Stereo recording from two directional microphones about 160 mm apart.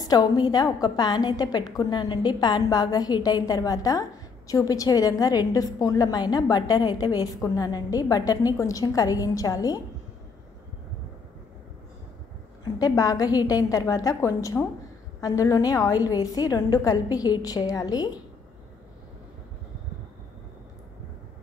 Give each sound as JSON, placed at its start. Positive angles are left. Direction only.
{"t": 0.0, "sound": "a woman's voice", "side_deg": 25}
{"t": 12.7, "sound": "a woman's voice", "side_deg": 20}